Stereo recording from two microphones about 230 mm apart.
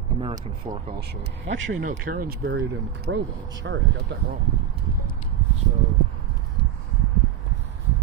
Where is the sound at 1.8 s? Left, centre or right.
Right.